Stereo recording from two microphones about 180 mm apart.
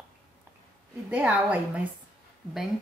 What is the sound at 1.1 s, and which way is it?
Speech, 5° right (ahead or behind).